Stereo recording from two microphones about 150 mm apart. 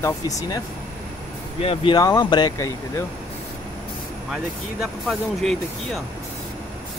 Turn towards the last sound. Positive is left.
turn(degrees=0)  # may be behind; listen again after turning